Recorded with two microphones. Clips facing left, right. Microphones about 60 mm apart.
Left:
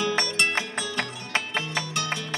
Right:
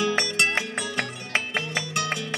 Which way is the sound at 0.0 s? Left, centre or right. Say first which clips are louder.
Right 1 dB; centre.